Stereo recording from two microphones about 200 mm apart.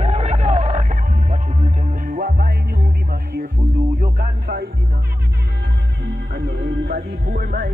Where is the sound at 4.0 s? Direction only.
45° right (ahead or behind).